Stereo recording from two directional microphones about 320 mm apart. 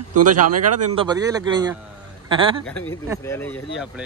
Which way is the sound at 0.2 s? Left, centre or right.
Right.